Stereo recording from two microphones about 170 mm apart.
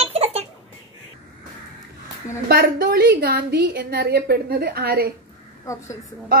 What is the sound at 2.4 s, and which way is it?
A woman's voice, 65° right (ahead or behind).